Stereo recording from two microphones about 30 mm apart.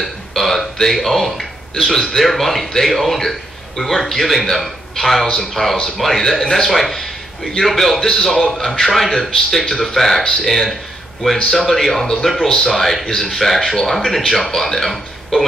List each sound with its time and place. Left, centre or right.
0.0 s a sound: centre
0.8 s a man's voice: centre
13.0 s speech: centre
13.3 s speech: centre